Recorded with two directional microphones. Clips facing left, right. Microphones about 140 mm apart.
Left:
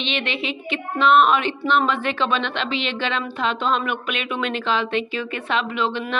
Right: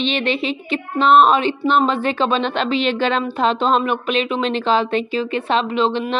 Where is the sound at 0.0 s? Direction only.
40° right (ahead or behind).